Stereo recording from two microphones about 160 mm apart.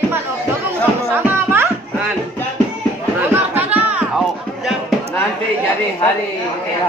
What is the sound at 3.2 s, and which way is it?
Chatter, 15° right (ahead or behind).